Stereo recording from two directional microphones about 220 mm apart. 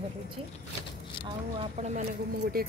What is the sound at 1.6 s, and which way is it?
Speech, 30° right (ahead or behind).